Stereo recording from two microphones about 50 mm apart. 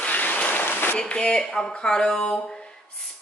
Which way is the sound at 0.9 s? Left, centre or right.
Left.